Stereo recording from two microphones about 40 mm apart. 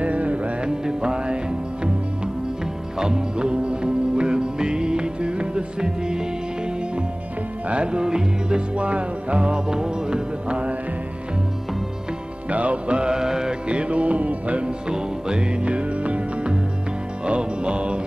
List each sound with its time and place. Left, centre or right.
0.0 s music: right
0.7 s music: centre
3.0 s music: centre
7.6 s music: right
12.4 s music: right; by 13.6 s centre
13.7 s music: right
14.9 s music: right